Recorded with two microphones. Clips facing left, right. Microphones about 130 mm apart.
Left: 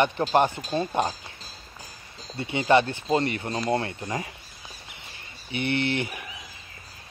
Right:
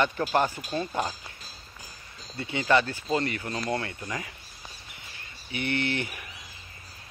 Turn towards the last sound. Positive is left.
turn(degrees=20)  # may be behind; listen again after turning